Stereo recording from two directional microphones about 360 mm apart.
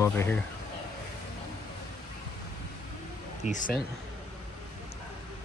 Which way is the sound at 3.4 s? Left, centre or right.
Left.